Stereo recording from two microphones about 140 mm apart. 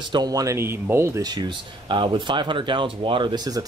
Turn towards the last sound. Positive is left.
turn(degrees=-30)  # may be behind; listen again after turning